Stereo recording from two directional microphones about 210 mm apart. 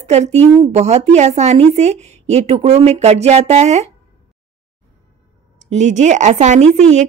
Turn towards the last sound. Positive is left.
turn(degrees=-35)  # may be behind; listen again after turning